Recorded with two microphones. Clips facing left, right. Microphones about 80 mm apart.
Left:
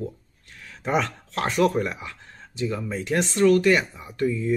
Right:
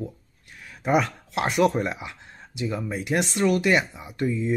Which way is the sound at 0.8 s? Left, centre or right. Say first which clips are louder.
Right 2 dB; centre.